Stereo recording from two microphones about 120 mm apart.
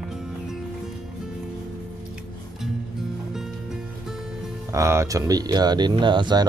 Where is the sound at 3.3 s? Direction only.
5° right (ahead or behind).